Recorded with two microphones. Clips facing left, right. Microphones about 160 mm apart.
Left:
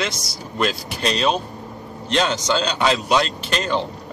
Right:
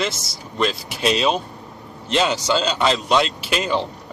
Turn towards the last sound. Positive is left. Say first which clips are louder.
# right 1 dB
turn(degrees=-10)  # may be behind; listen again after turning